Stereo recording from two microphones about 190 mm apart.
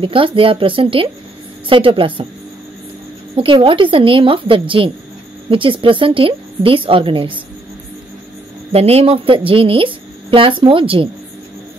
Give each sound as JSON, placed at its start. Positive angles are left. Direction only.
{"t": 0.0, "sound": "a woman's voice", "side_deg": -30}
{"t": 3.3, "sound": "a woman's voice", "side_deg": -25}
{"t": 8.7, "sound": "a woman's voice", "side_deg": -30}